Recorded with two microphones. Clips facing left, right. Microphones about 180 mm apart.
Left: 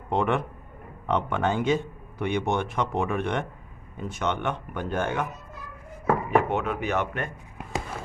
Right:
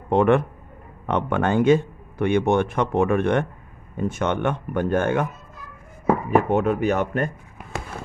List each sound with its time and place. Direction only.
0.1 s speech: 50° right (ahead or behind)
6.3 s speech: 40° right (ahead or behind)